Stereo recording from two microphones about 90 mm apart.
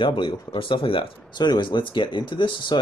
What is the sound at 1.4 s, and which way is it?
Speech, 55° left (ahead or behind).